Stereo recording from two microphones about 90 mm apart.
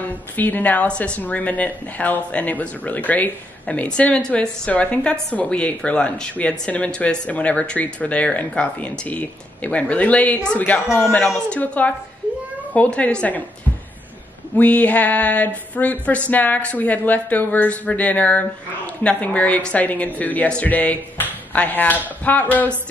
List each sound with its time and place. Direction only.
0.4 s speech: 20° left (ahead or behind)
14.6 s speech: 15° left (ahead or behind)